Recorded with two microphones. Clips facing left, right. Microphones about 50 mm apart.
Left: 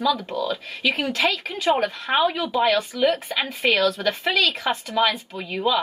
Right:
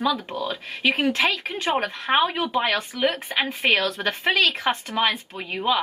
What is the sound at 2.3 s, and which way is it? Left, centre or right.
Speech, right.